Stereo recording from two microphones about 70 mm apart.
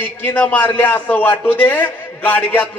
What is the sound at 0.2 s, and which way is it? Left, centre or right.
Speech, left.